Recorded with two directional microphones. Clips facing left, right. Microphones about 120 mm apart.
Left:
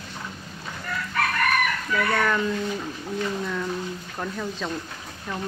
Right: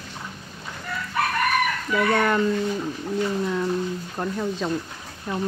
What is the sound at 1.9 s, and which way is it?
Speech, 15° right (ahead or behind).